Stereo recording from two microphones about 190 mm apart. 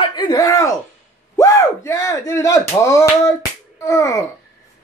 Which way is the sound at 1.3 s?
15° left (ahead or behind).